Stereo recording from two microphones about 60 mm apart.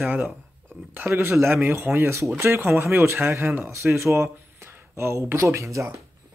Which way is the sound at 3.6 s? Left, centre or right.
Right.